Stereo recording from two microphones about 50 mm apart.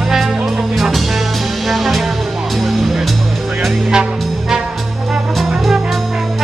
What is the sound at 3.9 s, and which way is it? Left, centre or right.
Music, centre.